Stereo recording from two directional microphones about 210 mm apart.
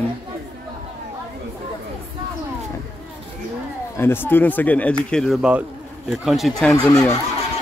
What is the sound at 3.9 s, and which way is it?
A man's voice, 10° left (ahead or behind).